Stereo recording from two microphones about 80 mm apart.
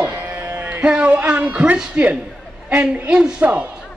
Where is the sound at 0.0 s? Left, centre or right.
Right.